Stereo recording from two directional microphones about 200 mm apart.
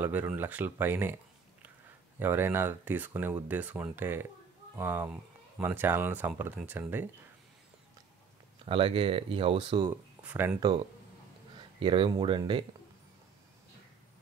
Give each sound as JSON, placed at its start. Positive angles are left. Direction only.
{"t": 0.0, "sound": "speech", "side_deg": -10}
{"t": 2.1, "sound": "speech", "side_deg": -10}
{"t": 8.6, "sound": "speech", "side_deg": -25}
{"t": 9.8, "sound": "speech", "side_deg": -10}
{"t": 11.5, "sound": "speech", "side_deg": -25}